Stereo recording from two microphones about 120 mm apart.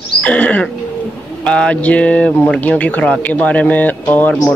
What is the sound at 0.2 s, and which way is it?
Speech, 10° left (ahead or behind).